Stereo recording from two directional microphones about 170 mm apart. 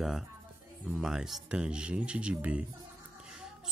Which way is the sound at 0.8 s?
Centre (ahead or behind).